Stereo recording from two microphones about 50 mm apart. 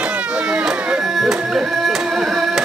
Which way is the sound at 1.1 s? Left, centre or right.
Centre.